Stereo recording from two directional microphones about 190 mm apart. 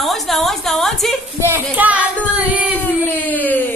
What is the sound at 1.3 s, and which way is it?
A woman's voice, 10° right (ahead or behind).